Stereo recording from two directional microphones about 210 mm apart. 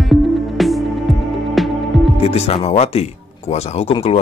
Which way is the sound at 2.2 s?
30° left (ahead or behind).